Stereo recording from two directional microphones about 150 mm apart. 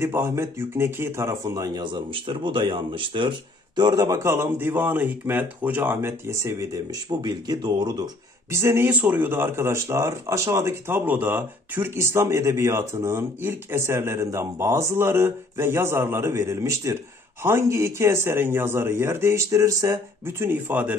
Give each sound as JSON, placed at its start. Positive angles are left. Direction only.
{"t": 0.0, "sound": "speech", "side_deg": -15}